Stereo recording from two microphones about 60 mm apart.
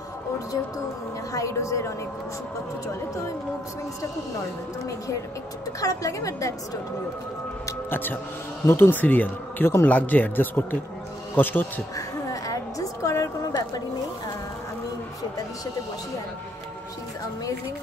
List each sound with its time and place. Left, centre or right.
1.3 s speech: left
5.8 s a woman's voice: left
7.9 s speech: left
9.0 s speech: left
11.9 s a sound: left